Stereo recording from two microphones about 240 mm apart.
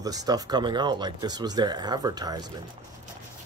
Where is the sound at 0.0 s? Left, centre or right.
Centre.